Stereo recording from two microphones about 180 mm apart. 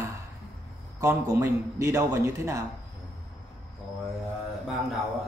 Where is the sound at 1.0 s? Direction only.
15° right (ahead or behind).